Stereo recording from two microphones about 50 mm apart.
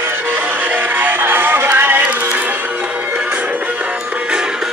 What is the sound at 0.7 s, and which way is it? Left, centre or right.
Music, right.